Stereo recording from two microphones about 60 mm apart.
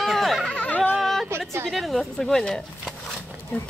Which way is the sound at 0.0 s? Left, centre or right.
Centre.